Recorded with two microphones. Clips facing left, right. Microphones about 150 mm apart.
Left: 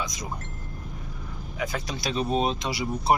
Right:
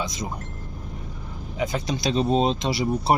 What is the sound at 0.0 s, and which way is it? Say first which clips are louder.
Speech: right 4 dB; 25° right (ahead or behind).